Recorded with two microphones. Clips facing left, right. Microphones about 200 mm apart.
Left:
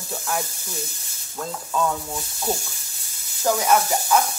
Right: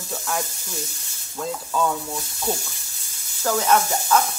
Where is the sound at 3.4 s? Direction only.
15° left (ahead or behind).